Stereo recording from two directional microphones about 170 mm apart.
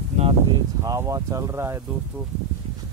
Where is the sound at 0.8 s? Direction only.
20° right (ahead or behind).